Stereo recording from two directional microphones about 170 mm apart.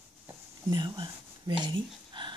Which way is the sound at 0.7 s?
25° right (ahead or behind).